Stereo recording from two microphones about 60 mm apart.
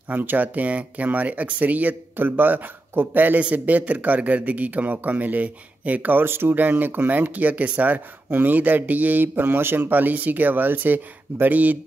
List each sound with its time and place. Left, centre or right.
0.1 s a man's voice: right